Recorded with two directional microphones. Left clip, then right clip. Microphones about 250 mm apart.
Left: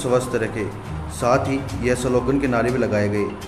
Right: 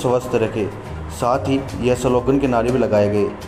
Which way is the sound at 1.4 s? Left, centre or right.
Right.